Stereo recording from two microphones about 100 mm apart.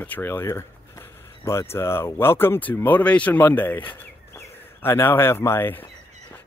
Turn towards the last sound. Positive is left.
turn(degrees=20)  # may be behind; listen again after turning